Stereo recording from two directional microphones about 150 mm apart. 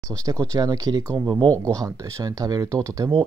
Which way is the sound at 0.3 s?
25° right (ahead or behind).